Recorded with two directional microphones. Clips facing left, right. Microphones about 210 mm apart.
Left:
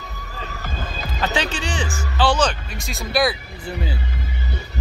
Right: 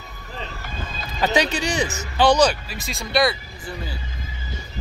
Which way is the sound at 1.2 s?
10° right (ahead or behind).